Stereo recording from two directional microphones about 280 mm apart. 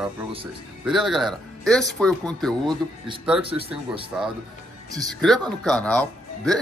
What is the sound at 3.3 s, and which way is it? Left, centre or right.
Speech, centre.